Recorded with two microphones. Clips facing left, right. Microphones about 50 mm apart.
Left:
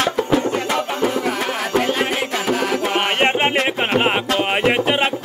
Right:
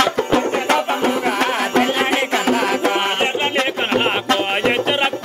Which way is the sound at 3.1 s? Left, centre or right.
Left.